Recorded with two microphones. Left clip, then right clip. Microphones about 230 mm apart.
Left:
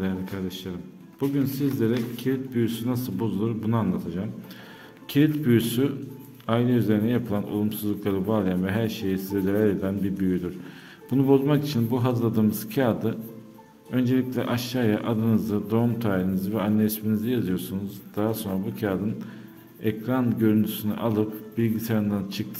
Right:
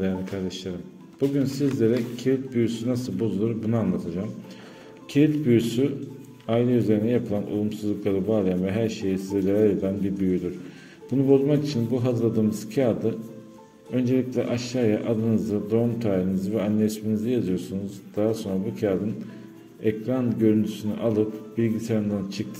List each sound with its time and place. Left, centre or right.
1.3 s a man's voice: centre
5.1 s a man's voice: centre